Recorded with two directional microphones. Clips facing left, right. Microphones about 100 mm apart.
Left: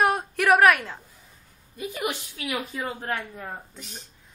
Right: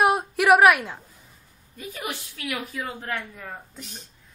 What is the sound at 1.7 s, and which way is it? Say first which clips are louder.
A woman's voice: left 4 dB; 15° left (ahead or behind).